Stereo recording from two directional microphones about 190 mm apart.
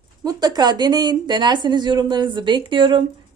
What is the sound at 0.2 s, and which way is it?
A woman's voice, 20° right (ahead or behind).